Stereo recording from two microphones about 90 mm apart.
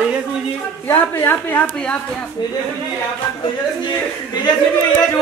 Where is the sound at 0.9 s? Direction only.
25° left (ahead or behind).